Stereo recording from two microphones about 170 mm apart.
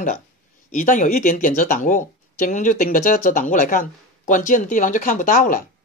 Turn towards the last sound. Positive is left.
turn(degrees=55)  # may be behind; listen again after turning